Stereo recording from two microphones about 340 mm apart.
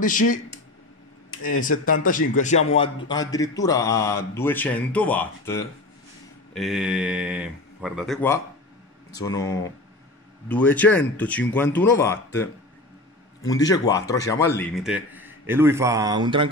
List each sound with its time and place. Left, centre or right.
0.0 s speech: left
1.4 s a man's voice: left
10.5 s a man's voice: centre
13.5 s a man's voice: centre